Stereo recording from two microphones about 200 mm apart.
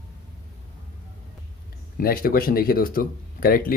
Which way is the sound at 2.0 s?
45° left (ahead or behind).